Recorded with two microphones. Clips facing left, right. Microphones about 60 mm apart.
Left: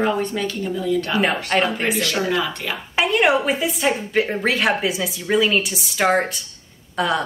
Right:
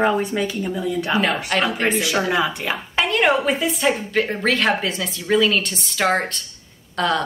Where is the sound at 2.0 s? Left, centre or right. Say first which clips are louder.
Right 1 dB; centre.